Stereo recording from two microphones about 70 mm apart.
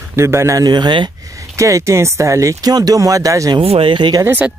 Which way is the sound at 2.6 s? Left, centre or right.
Right.